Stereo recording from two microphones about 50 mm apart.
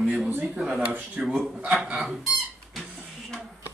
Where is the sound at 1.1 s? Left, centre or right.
Centre.